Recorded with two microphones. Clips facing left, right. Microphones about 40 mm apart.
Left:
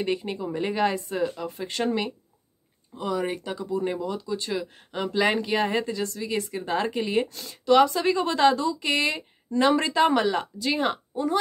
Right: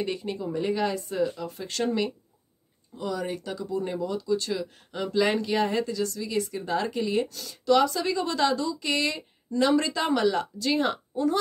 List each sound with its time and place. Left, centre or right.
0.0 s speech: left